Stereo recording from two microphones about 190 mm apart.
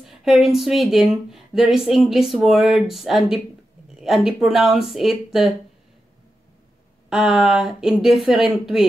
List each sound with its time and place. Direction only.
0.0 s speech: centre (ahead or behind)
7.1 s speech: 5° right (ahead or behind)